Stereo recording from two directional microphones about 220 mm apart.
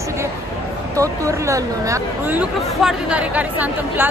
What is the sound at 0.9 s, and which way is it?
Speech, 15° right (ahead or behind).